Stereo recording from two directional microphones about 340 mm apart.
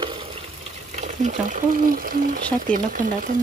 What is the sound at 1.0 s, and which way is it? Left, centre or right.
Speech, right.